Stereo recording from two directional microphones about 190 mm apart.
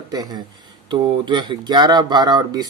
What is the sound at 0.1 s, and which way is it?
Speech, 20° right (ahead or behind).